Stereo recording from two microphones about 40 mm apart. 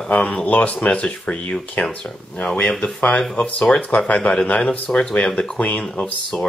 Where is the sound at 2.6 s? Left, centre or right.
Centre.